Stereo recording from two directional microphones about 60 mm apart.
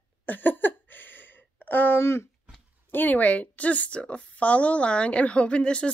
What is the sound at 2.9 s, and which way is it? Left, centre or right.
A woman's voice, left.